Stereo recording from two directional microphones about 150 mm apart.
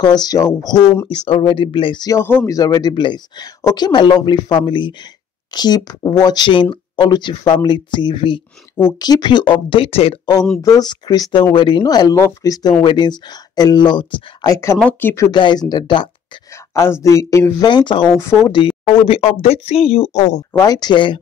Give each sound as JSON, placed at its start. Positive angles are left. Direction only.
{"t": 0.0, "sound": "speech", "side_deg": 25}
{"t": 1.0, "sound": "speech", "side_deg": 30}
{"t": 10.6, "sound": "speech", "side_deg": 25}
{"t": 14.8, "sound": "speech", "side_deg": 10}
{"t": 16.7, "sound": "speech", "side_deg": 20}
{"t": 18.1, "sound": "speech", "side_deg": 20}
{"t": 19.0, "sound": "speech", "side_deg": 40}
{"t": 20.5, "sound": "speech", "side_deg": 25}